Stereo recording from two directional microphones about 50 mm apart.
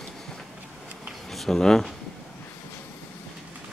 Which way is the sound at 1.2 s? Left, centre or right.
Centre.